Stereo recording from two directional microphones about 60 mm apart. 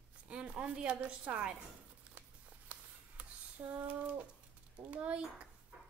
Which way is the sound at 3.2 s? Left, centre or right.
Right.